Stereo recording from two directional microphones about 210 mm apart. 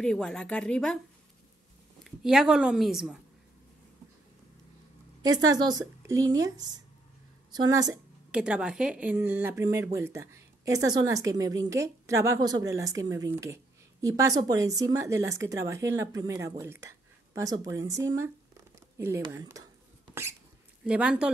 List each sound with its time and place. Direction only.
0.0 s a woman's voice: 5° left (ahead or behind)
2.0 s a woman's voice: 5° right (ahead or behind)
5.2 s a woman's voice: 15° right (ahead or behind)
20.8 s a woman's voice: 5° right (ahead or behind)